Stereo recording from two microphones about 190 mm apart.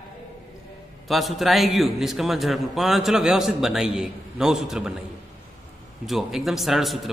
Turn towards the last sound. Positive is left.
turn(degrees=0)  # may be behind; listen again after turning